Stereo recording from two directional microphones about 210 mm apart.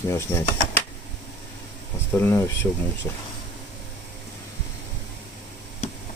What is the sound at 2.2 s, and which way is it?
Speech, 10° left (ahead or behind).